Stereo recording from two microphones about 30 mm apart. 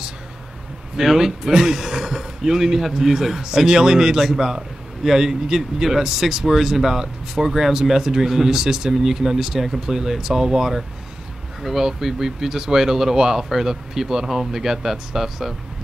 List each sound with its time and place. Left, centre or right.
1.0 s speech: centre
11.6 s speech: centre